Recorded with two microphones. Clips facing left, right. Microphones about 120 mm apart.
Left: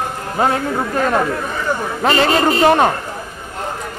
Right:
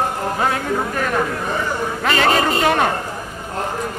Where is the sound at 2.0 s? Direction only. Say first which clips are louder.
Left 2 dB; 30° left (ahead or behind).